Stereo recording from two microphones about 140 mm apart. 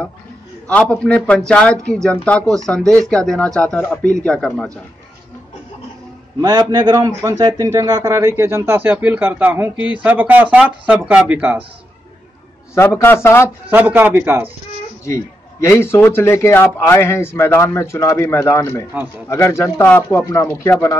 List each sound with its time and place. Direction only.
0.7 s a man's voice: 10° left (ahead or behind)
6.4 s speech: 30° right (ahead or behind); by 11.6 s 10° right (ahead or behind)
12.7 s a man's voice: 20° left (ahead or behind)
13.7 s speech: 15° right (ahead or behind)
15.6 s a man's voice: 20° left (ahead or behind)